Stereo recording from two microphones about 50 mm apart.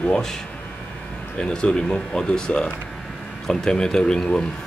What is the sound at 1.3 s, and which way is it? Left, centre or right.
Speech, left.